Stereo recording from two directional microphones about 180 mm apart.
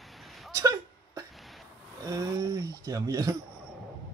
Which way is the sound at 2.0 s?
20° right (ahead or behind).